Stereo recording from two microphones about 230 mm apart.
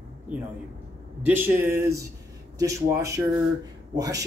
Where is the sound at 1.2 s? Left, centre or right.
Centre.